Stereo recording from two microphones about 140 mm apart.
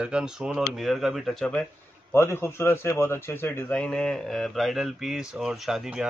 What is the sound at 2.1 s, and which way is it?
Speech, 15° left (ahead or behind).